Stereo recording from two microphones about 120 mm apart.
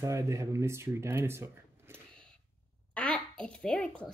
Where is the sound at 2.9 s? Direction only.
10° left (ahead or behind).